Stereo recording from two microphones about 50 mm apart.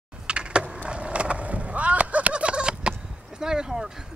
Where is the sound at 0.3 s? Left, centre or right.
Centre.